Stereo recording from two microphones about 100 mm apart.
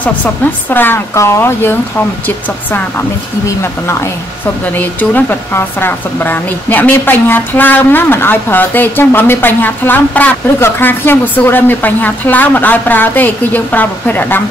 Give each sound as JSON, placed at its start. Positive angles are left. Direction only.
{"t": 0.0, "sound": "speech", "side_deg": 15}
{"t": 4.7, "sound": "speech", "side_deg": 20}